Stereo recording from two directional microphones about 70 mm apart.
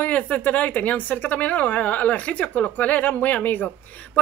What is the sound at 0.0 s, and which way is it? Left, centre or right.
Speech, left.